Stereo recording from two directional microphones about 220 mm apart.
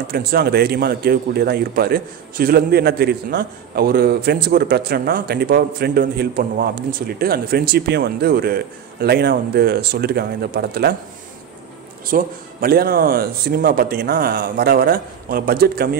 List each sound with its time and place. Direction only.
0.1 s a man's voice: 45° right (ahead or behind)
12.1 s a man's voice: 40° right (ahead or behind)